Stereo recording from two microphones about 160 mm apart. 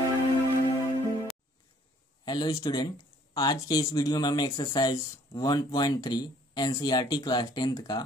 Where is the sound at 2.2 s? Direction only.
25° left (ahead or behind).